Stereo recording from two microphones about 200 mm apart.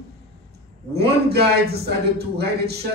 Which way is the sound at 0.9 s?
55° right (ahead or behind).